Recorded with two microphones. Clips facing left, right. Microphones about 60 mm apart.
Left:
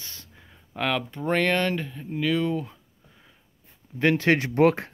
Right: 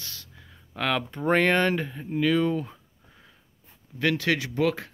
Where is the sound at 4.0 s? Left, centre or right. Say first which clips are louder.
Left 4 dB; left.